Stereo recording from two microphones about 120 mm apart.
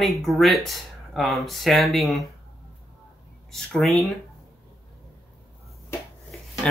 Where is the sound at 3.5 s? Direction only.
Centre (ahead or behind).